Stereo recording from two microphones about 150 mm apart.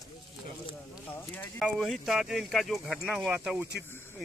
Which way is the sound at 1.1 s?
15° left (ahead or behind).